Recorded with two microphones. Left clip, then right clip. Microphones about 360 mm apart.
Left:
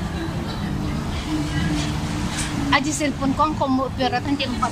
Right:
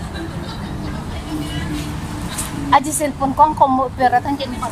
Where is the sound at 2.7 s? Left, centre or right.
Centre.